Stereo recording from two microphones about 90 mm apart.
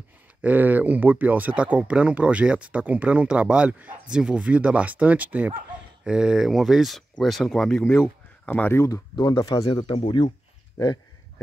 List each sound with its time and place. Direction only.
0.4 s speech: 15° right (ahead or behind); by 7.8 s 5° left (ahead or behind)
8.5 s speech: 20° left (ahead or behind)
9.1 s speech: 45° left (ahead or behind)
9.6 s speech: 80° left